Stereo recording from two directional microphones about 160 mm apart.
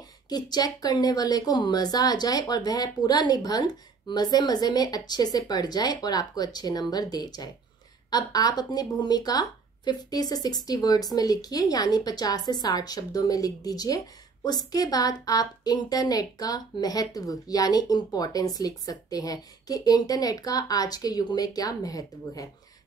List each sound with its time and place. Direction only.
0.3 s a woman's voice: 25° left (ahead or behind)